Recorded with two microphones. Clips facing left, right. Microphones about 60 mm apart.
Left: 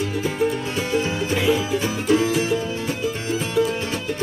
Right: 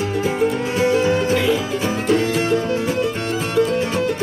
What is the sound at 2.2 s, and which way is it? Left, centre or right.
Music, right.